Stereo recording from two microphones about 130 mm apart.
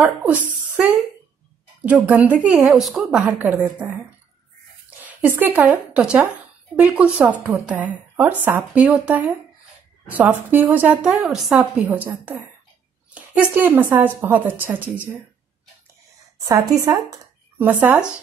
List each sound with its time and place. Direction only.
0.2 s a woman's voice: 10° right (ahead or behind)
5.0 s a woman's voice: 15° right (ahead or behind)
16.7 s speech: 25° right (ahead or behind)
17.6 s a woman's voice: 15° right (ahead or behind)